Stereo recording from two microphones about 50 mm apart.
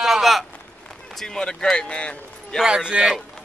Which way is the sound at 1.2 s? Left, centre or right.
Centre.